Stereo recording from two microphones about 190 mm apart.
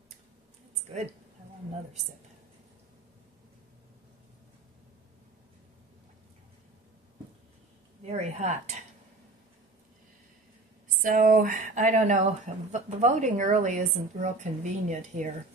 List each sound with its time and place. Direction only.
8.1 s a woman's voice: 35° right (ahead or behind)
11.0 s a woman's voice: 45° right (ahead or behind)